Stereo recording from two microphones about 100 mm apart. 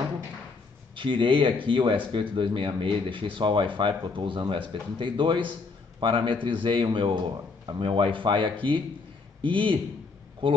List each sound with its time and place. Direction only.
0.9 s speech: 55° right (ahead or behind)